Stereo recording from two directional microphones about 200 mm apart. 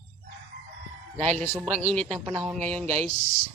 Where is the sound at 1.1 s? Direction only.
35° right (ahead or behind).